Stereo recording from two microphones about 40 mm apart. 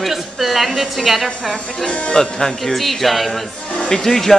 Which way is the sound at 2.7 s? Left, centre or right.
Centre.